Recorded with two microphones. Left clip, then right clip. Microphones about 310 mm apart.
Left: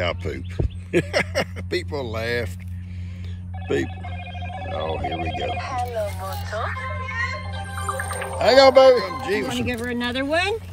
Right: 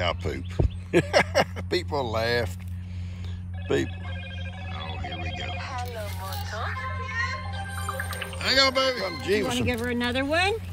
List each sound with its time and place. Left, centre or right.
0.0 s speech: centre
0.6 s a sound: left
0.9 s speech: centre
3.6 s speech: centre
4.7 s speech: centre
5.5 s speech: left
6.4 s music: left
8.4 s speech: centre
9.2 s speech: centre
9.7 s speech: centre